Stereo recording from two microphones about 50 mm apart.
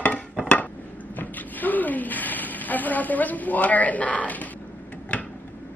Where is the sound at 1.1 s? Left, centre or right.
Left.